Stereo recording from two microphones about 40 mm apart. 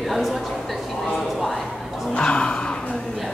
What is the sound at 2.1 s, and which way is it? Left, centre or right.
Speech, left.